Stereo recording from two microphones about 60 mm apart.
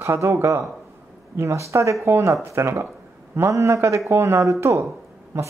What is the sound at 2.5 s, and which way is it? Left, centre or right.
Speech, right.